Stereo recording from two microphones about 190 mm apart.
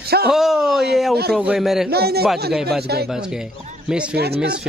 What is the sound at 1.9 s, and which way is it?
Speech, 55° right (ahead or behind).